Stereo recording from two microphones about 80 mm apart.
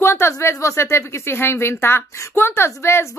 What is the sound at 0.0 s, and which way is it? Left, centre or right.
Speech, left.